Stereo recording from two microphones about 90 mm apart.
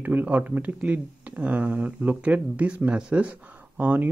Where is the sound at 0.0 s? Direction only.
20° right (ahead or behind).